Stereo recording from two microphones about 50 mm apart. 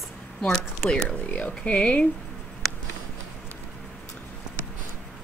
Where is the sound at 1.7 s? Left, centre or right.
Left.